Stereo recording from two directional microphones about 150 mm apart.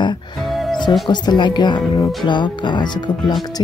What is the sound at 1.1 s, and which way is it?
Speech, 30° left (ahead or behind).